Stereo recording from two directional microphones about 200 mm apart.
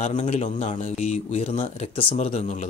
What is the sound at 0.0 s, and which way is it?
Speech, 35° left (ahead or behind).